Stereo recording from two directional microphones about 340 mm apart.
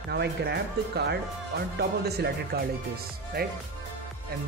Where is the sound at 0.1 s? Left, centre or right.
Right.